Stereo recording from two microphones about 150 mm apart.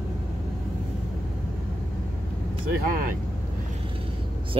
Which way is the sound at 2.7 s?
70° right (ahead or behind).